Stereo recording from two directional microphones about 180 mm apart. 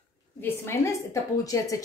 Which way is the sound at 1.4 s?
20° left (ahead or behind).